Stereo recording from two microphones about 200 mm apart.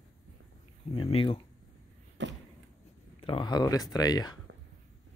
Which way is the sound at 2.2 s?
65° right (ahead or behind).